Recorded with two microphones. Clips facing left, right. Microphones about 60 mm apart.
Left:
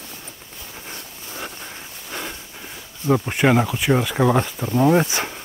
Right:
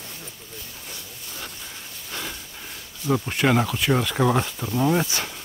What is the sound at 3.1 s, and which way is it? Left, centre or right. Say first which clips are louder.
Speech: left 4 dB; centre.